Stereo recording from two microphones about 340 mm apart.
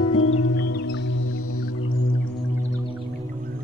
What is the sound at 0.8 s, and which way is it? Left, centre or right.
Music, left.